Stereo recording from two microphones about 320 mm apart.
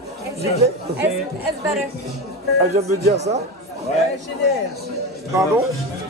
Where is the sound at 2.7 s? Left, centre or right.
Centre.